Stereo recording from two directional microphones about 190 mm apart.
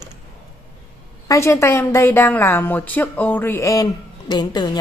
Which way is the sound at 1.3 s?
15° left (ahead or behind).